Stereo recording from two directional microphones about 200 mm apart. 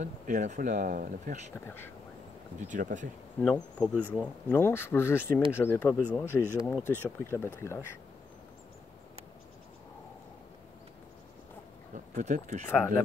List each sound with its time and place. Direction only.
0.0 s speech: 40° right (ahead or behind)
1.5 s speech: 10° left (ahead or behind)
2.7 s speech: 40° right (ahead or behind)
3.3 s bee: 5° left (ahead or behind)
4.1 s speech: 10° left (ahead or behind)
11.9 s speech: 40° right (ahead or behind)
12.6 s speech: 10° left (ahead or behind)